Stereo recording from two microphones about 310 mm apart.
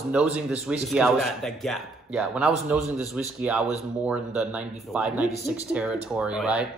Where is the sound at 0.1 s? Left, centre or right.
Centre.